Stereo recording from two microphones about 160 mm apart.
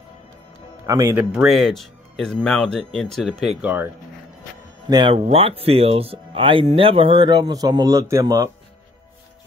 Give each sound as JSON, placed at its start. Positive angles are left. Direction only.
{"t": 0.8, "sound": "speech", "side_deg": -20}
{"t": 1.1, "sound": "speech", "side_deg": -5}
{"t": 4.8, "sound": "speech", "side_deg": -30}